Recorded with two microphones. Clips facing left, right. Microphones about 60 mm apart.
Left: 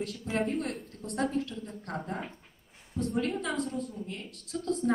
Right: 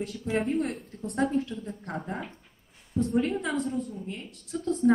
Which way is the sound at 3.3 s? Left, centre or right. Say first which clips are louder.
Right 2 dB; centre.